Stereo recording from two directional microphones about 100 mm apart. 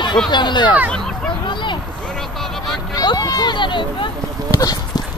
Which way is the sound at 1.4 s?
50° left (ahead or behind).